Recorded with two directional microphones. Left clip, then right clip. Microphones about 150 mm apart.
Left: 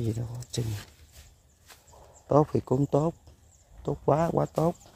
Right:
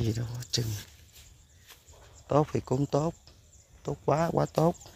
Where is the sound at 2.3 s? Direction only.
35° left (ahead or behind).